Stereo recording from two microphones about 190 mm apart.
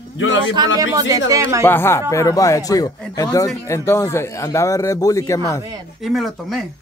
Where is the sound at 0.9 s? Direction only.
15° right (ahead or behind).